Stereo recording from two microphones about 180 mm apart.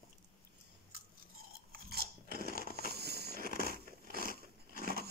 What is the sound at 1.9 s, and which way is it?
Crunch, 55° right (ahead or behind).